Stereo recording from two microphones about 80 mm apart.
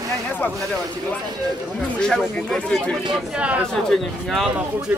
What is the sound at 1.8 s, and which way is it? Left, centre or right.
Speech, centre.